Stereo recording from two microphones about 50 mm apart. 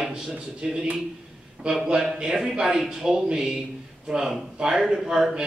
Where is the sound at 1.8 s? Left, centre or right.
Centre.